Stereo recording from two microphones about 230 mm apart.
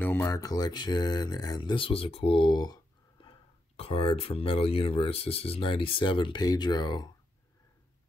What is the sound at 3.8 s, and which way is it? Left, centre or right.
Speech, left.